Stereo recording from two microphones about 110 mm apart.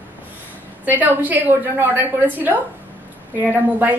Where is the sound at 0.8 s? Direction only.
15° right (ahead or behind).